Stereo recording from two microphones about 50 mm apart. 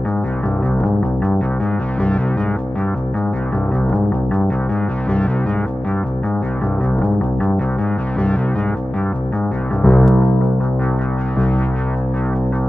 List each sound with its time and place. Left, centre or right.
9.8 s music: centre